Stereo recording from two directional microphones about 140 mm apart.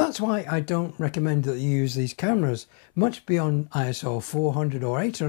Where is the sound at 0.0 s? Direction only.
20° left (ahead or behind).